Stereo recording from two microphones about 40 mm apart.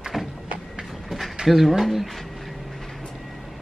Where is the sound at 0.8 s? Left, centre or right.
Centre.